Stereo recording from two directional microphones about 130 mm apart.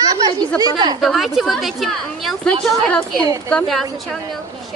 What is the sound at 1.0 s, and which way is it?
A woman's voice, centre (ahead or behind).